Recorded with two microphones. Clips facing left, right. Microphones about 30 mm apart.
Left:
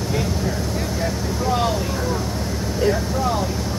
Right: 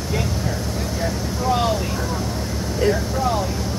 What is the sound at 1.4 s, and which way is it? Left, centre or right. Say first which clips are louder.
Vehicle: right 1 dB; centre.